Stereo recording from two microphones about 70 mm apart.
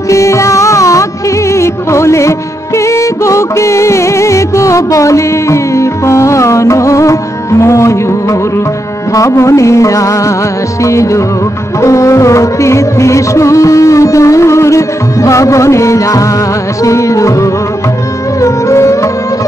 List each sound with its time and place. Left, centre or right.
0.1 s music: left